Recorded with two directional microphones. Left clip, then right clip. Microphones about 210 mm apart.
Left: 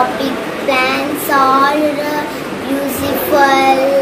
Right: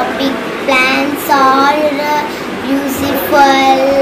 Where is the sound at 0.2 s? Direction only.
15° left (ahead or behind).